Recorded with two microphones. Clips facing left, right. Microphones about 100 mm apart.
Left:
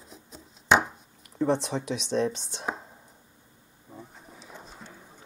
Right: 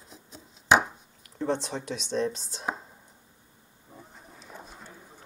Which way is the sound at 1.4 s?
Centre (ahead or behind).